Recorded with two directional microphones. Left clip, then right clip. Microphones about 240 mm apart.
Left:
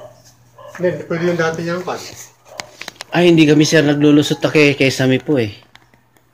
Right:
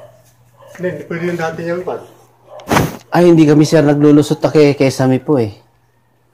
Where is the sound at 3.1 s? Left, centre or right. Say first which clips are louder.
Right 1 dB; centre.